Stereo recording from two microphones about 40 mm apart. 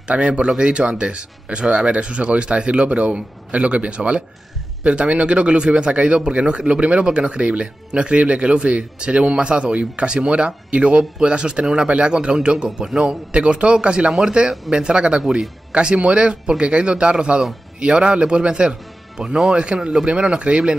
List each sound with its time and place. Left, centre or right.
0.1 s speech: right